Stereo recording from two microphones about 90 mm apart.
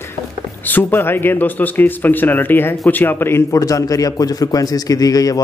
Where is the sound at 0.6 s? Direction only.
20° left (ahead or behind).